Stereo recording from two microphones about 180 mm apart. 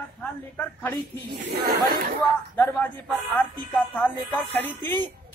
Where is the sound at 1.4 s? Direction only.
50° right (ahead or behind).